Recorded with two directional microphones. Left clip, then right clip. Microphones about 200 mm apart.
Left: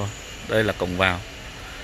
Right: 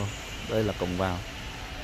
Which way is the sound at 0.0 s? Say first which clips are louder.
Left 3 dB; 20° left (ahead or behind).